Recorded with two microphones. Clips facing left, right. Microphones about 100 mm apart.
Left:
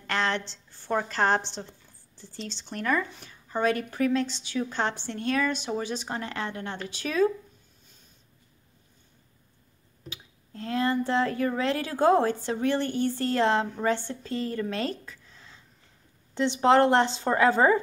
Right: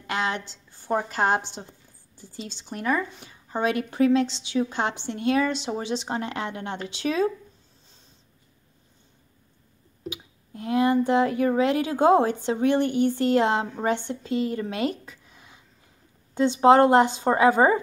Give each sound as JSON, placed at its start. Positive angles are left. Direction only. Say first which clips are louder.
{"t": 0.0, "sound": "a woman's voice", "louder": "even", "side_deg": -10}
{"t": 10.0, "sound": "a woman's voice", "louder": "right 9 dB", "side_deg": -15}